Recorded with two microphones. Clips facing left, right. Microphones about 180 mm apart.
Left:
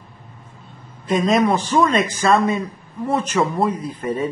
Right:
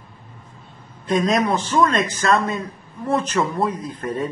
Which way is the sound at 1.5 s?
10° left (ahead or behind).